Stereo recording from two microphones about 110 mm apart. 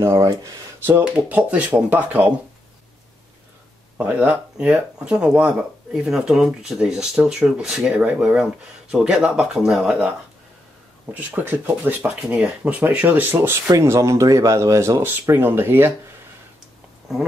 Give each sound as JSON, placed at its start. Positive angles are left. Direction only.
{"t": 0.0, "sound": "speech", "side_deg": -25}
{"t": 0.8, "sound": "speech", "side_deg": -15}
{"t": 4.0, "sound": "speech", "side_deg": -15}
{"t": 11.1, "sound": "speech", "side_deg": -15}
{"t": 17.1, "sound": "speech", "side_deg": -5}